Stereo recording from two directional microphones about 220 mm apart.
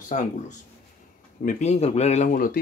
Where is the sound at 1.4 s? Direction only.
35° left (ahead or behind).